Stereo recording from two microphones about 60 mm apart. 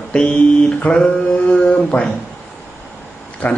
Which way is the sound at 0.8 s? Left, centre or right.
Centre.